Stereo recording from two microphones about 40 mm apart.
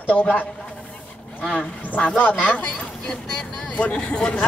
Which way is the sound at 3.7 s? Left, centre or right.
Left.